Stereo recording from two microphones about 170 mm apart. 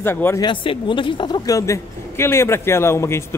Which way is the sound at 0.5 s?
30° left (ahead or behind).